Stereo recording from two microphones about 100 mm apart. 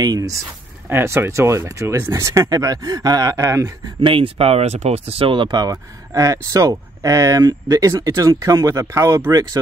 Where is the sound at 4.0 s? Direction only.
65° right (ahead or behind).